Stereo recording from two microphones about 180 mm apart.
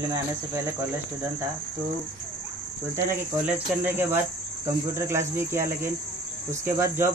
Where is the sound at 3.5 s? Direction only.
10° right (ahead or behind).